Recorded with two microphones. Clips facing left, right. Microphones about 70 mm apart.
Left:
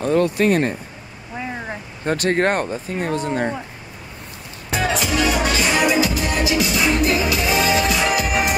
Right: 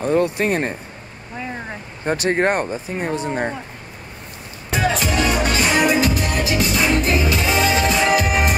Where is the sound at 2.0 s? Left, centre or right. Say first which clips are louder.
Even; centre.